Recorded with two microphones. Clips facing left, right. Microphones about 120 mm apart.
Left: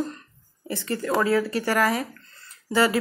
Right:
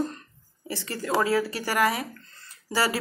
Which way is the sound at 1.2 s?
30° right (ahead or behind).